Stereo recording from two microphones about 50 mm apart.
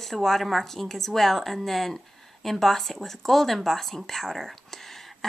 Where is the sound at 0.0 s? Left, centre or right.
Centre.